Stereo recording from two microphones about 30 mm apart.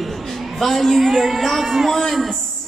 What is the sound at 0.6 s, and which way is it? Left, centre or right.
Speech, centre.